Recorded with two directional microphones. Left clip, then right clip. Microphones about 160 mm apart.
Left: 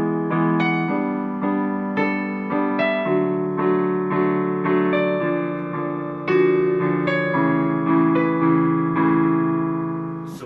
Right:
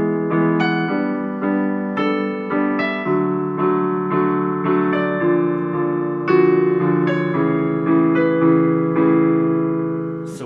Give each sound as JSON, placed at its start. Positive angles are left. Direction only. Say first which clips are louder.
{"t": 3.1, "sound": "keyboard", "louder": "right 1 dB", "side_deg": 20}
{"t": 6.3, "sound": "music", "louder": "right 2 dB", "side_deg": 25}